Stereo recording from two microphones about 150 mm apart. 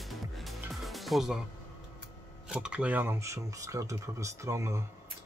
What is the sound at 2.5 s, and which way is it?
Speech, 5° right (ahead or behind).